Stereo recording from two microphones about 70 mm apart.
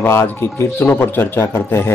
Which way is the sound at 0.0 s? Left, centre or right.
Left.